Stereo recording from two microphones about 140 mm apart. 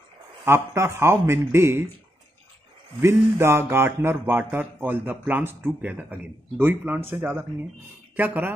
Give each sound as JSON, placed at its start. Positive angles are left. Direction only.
{"t": 0.5, "sound": "speech", "side_deg": -20}
{"t": 3.0, "sound": "speech", "side_deg": -20}